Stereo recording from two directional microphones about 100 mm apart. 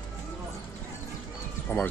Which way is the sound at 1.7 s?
20° left (ahead or behind).